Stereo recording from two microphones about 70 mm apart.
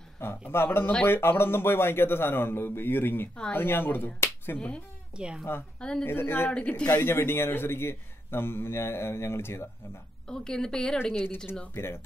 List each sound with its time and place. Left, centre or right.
0.5 s a man's voice: left
4.6 s a woman's voice: centre
5.1 s speech: centre
5.8 s speech: centre
6.0 s a man's voice: left
10.2 s a woman's voice: centre
11.1 s a man's voice: left